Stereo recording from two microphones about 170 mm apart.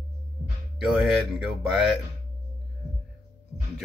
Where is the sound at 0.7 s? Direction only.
Centre (ahead or behind).